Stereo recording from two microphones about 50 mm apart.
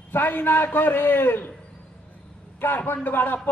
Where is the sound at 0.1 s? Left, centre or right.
Left.